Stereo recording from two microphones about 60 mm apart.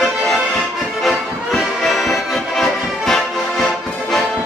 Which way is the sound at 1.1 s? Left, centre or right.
Centre.